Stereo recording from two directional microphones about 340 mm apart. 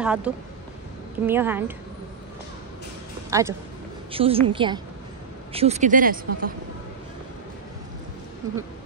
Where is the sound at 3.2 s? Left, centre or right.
Centre.